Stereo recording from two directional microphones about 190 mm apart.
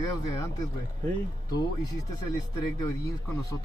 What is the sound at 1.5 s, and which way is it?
Speech, 20° left (ahead or behind).